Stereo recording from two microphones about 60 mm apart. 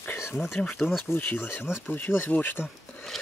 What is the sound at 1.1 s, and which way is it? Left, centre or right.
Speech, left.